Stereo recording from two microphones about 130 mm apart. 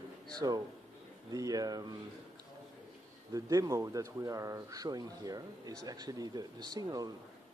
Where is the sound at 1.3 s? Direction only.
30° right (ahead or behind).